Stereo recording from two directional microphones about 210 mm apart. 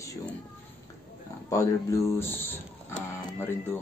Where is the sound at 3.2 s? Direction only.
10° left (ahead or behind).